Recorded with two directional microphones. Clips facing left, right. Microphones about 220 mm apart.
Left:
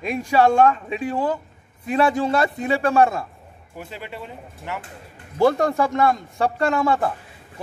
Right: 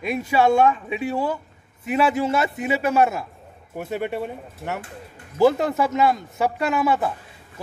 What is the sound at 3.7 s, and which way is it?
Speech, 55° right (ahead or behind).